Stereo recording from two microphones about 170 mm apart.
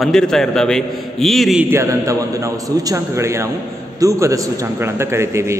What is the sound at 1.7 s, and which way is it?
A man's voice, 15° right (ahead or behind).